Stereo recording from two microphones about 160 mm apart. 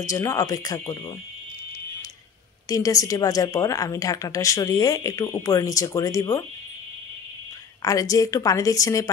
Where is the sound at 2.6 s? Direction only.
20° left (ahead or behind).